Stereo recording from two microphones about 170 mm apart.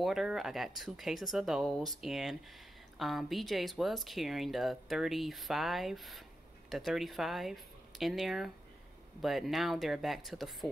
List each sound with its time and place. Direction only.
0.0 s speech: centre (ahead or behind)